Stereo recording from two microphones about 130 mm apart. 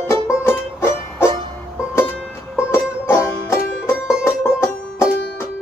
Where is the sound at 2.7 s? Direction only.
20° left (ahead or behind).